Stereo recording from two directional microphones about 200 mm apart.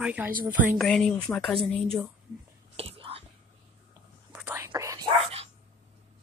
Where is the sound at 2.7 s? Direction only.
30° right (ahead or behind).